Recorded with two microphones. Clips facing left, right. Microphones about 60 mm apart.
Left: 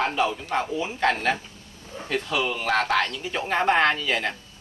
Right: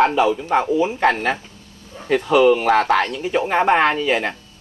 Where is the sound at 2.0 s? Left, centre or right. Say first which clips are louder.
Right 12 dB; right.